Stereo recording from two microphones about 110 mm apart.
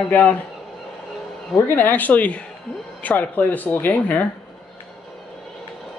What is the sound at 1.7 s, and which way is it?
Speech, 15° left (ahead or behind).